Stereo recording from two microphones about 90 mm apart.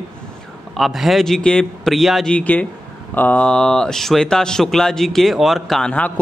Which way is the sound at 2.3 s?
15° left (ahead or behind).